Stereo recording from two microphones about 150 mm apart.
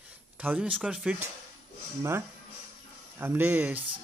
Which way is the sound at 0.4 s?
10° right (ahead or behind).